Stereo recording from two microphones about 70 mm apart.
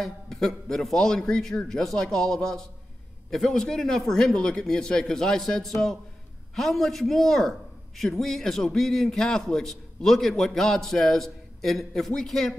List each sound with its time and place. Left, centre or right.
0.0 s a man's voice: centre